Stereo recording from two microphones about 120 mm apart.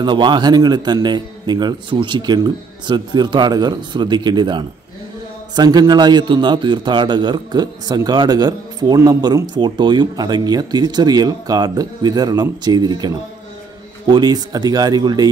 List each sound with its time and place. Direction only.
0.0 s a man's voice: 40° right (ahead or behind)
14.1 s a man's voice: 35° right (ahead or behind)